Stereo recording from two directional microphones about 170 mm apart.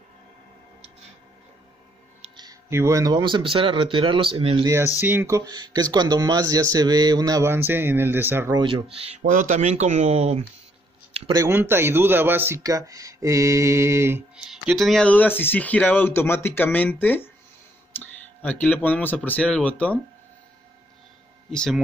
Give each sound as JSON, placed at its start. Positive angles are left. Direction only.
{"t": 2.3, "sound": "speech", "side_deg": -20}
{"t": 5.0, "sound": "speech", "side_deg": -15}
{"t": 8.5, "sound": "speech", "side_deg": -30}
{"t": 9.3, "sound": "speech", "side_deg": -50}
{"t": 11.3, "sound": "a man's voice", "side_deg": -15}
{"t": 21.5, "sound": "speech", "side_deg": 0}